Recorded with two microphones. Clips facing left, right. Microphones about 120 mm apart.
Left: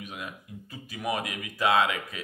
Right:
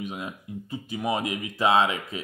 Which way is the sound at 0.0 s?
25° right (ahead or behind).